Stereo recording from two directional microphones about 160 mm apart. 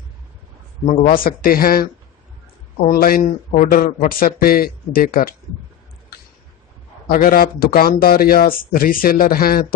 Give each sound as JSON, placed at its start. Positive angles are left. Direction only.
{"t": 1.0, "sound": "speech", "side_deg": 65}
{"t": 2.9, "sound": "speech", "side_deg": 65}
{"t": 7.1, "sound": "speech", "side_deg": 65}